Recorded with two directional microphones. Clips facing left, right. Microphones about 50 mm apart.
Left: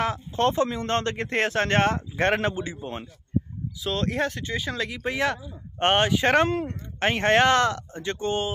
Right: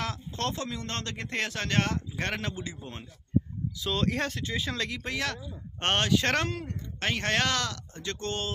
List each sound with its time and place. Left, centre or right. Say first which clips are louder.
0.0 s speech: left 9 dB; left
3.8 s speech: left 3 dB; centre